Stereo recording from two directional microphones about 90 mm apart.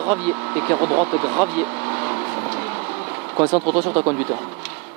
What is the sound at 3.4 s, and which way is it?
Speech, 25° right (ahead or behind).